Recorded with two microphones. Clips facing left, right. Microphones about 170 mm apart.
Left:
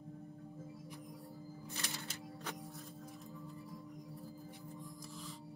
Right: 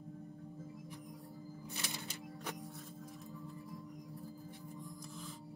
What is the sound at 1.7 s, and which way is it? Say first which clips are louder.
Music: even; 15° right (ahead or behind).